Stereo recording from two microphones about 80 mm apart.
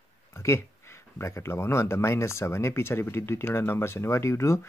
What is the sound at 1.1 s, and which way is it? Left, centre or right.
Speech, left.